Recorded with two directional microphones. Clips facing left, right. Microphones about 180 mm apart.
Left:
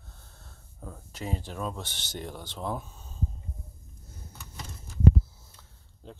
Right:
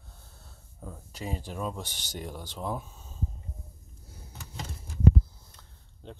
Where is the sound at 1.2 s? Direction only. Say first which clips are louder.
Even; 10° right (ahead or behind).